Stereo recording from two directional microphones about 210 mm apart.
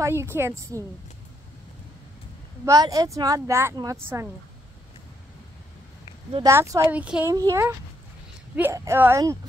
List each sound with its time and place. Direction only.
0.0 s speech: 10° right (ahead or behind)
2.6 s speech: 15° right (ahead or behind)
6.4 s speech: 15° right (ahead or behind)